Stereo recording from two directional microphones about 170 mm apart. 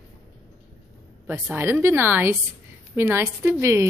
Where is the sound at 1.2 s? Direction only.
10° right (ahead or behind).